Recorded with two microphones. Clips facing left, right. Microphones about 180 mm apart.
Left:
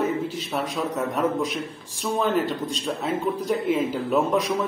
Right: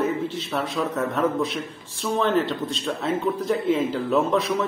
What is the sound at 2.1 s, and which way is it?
A man's voice, 10° left (ahead or behind).